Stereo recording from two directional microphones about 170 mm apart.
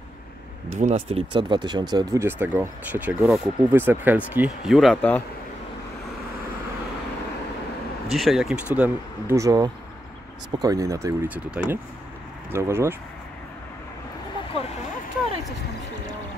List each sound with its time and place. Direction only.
0.7 s speech: 40° right (ahead or behind); by 2.2 s 25° right (ahead or behind)
2.2 s speech: 10° right (ahead or behind); by 5.2 s 5° left (ahead or behind)
8.1 s speech: centre (ahead or behind)
9.4 s speech: 20° right (ahead or behind)
11.2 s speech: 5° right (ahead or behind)